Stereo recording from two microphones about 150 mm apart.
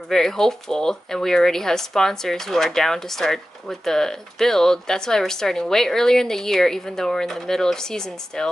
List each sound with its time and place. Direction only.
0.1 s speech: 5° left (ahead or behind)